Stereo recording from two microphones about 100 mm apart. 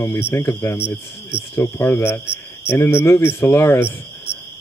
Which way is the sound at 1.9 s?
25° left (ahead or behind).